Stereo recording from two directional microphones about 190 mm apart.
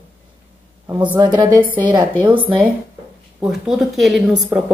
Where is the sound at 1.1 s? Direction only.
25° right (ahead or behind).